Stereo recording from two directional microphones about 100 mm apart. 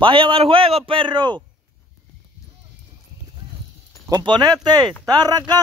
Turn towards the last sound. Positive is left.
turn(degrees=-40)  # may be behind; listen again after turning